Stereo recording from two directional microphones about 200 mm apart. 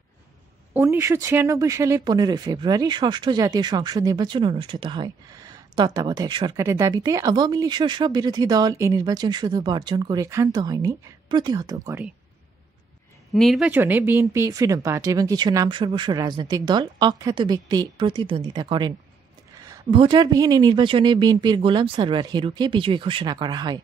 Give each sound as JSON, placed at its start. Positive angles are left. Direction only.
{"t": 0.7, "sound": "speech", "side_deg": -10}
{"t": 13.3, "sound": "speech", "side_deg": 0}